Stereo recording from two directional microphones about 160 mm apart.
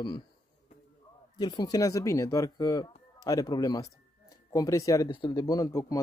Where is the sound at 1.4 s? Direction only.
25° left (ahead or behind).